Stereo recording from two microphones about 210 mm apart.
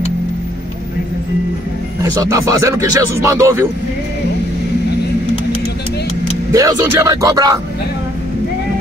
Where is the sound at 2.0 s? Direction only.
15° right (ahead or behind).